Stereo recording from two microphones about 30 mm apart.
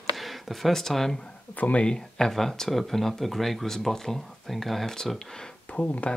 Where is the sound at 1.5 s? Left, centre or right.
Left.